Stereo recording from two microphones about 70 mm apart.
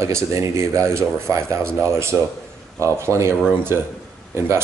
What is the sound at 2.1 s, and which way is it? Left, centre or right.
Speech, centre.